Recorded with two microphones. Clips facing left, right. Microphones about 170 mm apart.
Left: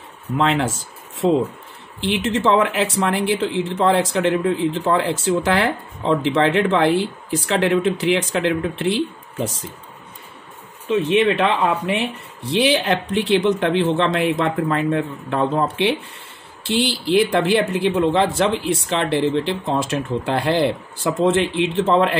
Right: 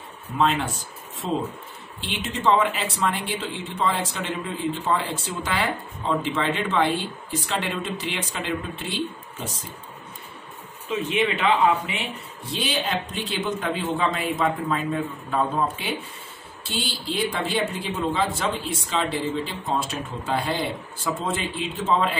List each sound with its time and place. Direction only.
0.4 s speech: 90° left
2.0 s speech: 80° left
11.0 s a man's voice: 80° left